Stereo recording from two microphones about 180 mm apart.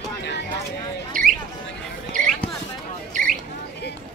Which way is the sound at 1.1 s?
50° right (ahead or behind).